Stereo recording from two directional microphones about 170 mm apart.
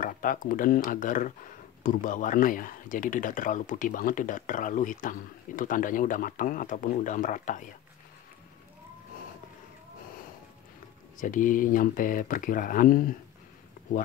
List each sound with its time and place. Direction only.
0.0 s speech: 55° left (ahead or behind)
11.1 s speech: 50° left (ahead or behind)
13.8 s a sound: 50° left (ahead or behind)